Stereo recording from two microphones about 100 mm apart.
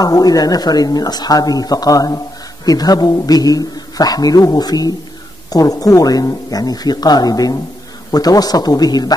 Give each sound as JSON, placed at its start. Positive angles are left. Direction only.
{"t": 0.0, "sound": "a man's voice", "side_deg": 40}